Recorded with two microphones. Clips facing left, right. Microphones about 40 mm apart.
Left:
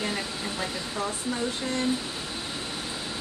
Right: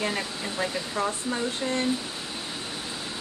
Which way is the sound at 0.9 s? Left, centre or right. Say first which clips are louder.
Right 2 dB; right.